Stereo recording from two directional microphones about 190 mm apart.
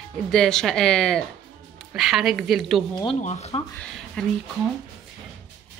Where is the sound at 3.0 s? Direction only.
30° left (ahead or behind).